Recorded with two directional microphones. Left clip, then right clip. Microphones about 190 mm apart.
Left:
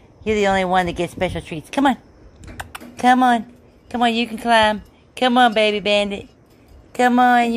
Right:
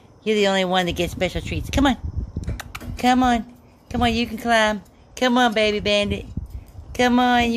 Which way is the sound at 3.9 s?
Centre (ahead or behind).